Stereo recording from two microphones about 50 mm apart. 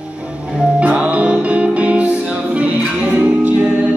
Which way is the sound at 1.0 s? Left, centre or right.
Right.